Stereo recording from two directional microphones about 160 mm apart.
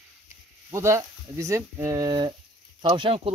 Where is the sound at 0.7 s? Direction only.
15° right (ahead or behind); by 3.3 s 35° right (ahead or behind).